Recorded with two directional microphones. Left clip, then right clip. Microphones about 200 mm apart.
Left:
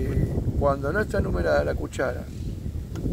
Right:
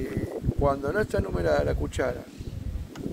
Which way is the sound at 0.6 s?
5° right (ahead or behind).